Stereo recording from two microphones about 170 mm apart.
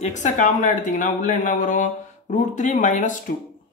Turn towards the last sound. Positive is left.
turn(degrees=45)  # may be behind; listen again after turning